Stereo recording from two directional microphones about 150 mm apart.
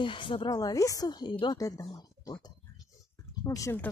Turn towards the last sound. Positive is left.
turn(degrees=15)  # may be behind; listen again after turning